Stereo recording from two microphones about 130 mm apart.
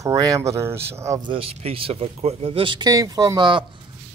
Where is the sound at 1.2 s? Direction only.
45° right (ahead or behind).